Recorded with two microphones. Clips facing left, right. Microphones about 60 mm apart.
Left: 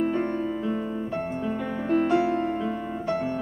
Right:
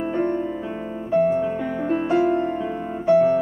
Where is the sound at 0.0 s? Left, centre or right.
Centre.